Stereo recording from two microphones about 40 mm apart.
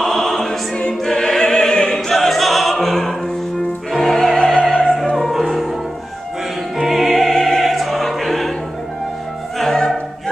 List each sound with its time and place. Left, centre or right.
0.0 s choir: centre
1.0 s music: centre
2.1 s opera: centre
5.1 s music: centre
6.8 s music: centre
7.2 s opera: centre
9.6 s music: centre